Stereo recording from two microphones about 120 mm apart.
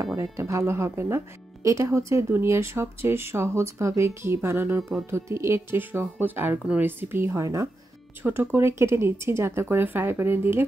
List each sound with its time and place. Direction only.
0.0 s speech: 25° right (ahead or behind)